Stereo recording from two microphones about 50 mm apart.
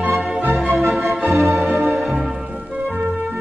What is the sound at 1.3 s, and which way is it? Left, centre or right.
Music, right.